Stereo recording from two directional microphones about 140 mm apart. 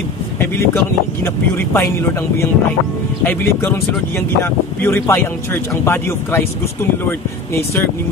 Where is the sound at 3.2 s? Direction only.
15° left (ahead or behind).